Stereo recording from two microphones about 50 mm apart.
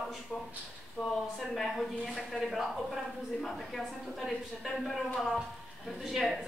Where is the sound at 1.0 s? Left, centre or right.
Centre.